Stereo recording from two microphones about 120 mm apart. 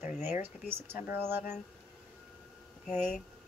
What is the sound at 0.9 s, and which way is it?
Speech, 20° right (ahead or behind).